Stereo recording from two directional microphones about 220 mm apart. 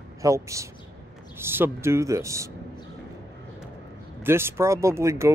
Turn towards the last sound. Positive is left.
turn(degrees=-15)  # may be behind; listen again after turning